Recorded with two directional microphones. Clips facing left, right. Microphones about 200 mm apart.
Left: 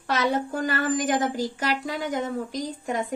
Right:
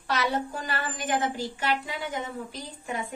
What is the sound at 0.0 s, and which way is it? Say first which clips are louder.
A woman's voice: left 3 dB; 50° left (ahead or behind).